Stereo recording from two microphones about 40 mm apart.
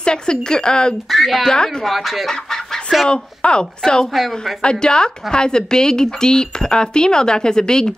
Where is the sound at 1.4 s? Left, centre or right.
Centre.